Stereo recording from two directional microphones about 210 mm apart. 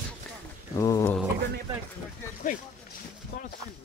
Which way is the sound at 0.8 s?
15° left (ahead or behind).